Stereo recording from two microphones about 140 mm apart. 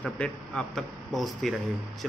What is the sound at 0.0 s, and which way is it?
A man's voice, 5° left (ahead or behind).